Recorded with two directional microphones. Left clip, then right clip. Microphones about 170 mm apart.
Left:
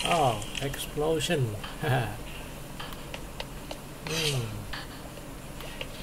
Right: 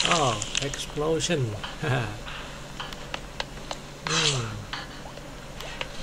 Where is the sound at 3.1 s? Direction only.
10° left (ahead or behind).